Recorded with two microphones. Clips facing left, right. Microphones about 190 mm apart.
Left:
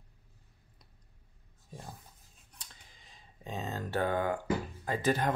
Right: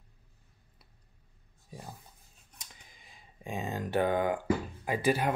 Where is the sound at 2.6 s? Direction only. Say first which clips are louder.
Right 2 dB; 10° right (ahead or behind).